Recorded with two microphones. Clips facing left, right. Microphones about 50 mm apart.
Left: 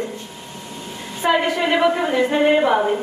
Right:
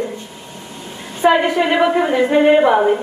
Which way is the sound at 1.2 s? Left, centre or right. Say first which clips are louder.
Right 5 dB; centre.